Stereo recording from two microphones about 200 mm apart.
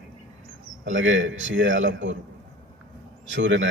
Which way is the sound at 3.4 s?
65° right (ahead or behind).